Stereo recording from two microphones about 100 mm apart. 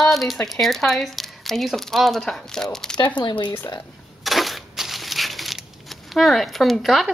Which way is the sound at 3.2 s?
50° left (ahead or behind).